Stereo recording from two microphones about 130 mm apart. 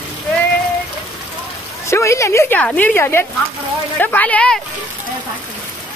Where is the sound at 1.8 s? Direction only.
20° left (ahead or behind).